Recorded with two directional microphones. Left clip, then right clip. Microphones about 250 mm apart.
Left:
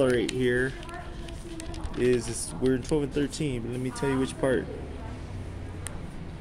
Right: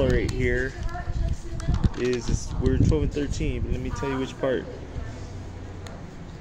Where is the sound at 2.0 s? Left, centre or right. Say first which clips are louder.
Left 2 dB; left.